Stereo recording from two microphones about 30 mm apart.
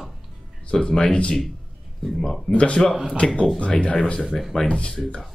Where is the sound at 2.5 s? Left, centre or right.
Left.